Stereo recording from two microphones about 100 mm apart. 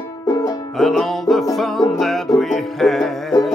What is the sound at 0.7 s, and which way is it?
Music, centre (ahead or behind).